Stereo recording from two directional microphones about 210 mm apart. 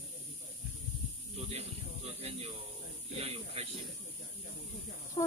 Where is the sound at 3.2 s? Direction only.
30° right (ahead or behind).